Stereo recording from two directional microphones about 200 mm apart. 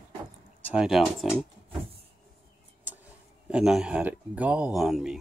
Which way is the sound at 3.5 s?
5° right (ahead or behind).